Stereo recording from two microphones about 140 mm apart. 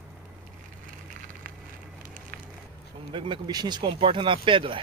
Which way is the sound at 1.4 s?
90° right.